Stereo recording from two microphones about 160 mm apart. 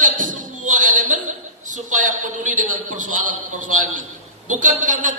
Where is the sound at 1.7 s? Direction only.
50° right (ahead or behind).